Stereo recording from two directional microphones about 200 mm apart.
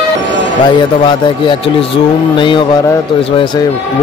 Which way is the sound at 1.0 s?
25° left (ahead or behind).